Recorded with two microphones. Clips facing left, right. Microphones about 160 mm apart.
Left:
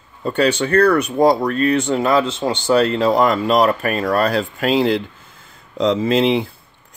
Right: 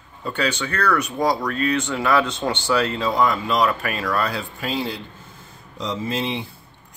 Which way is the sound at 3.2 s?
65° left (ahead or behind).